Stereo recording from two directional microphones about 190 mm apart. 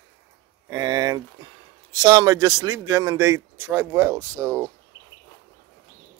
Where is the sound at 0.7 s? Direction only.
15° right (ahead or behind).